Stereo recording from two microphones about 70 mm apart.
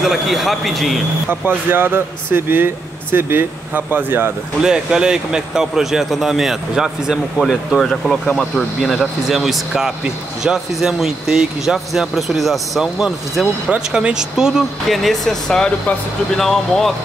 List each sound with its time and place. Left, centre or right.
0.0 s speech: centre
1.7 s speech: right
4.6 s speech: centre